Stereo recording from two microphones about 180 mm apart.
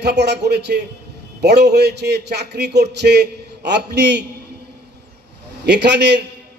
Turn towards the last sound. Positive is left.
turn(degrees=-70)  # may be behind; listen again after turning